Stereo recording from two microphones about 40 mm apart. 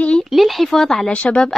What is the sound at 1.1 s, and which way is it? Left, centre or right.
Speech, left.